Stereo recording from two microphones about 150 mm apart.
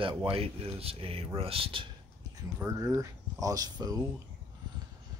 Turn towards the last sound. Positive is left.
turn(degrees=-25)  # may be behind; listen again after turning